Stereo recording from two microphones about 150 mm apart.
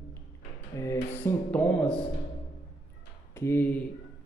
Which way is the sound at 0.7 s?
20° left (ahead or behind).